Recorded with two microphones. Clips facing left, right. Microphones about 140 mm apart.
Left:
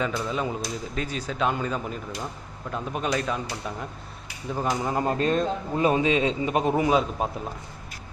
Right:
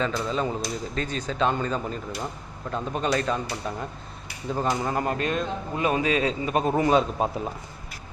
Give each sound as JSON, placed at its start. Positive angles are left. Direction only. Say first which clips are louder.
{"t": 0.2, "sound": "speech", "louder": "right 1 dB", "side_deg": 5}
{"t": 4.8, "sound": "a man's voice", "louder": "left 2 dB", "side_deg": 20}
{"t": 6.7, "sound": "speech", "louder": "right 3 dB", "side_deg": 5}